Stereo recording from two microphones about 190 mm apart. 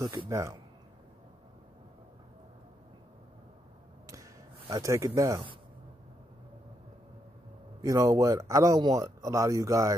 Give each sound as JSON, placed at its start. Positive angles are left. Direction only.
{"t": 0.0, "sound": "speech", "side_deg": -20}
{"t": 4.1, "sound": "a sound", "side_deg": -20}
{"t": 7.8, "sound": "speech", "side_deg": -20}